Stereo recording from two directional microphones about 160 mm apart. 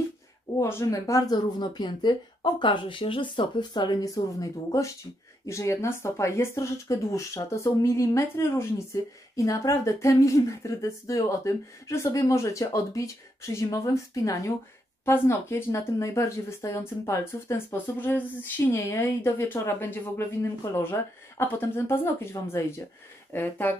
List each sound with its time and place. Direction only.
0.6 s speech: 15° left (ahead or behind)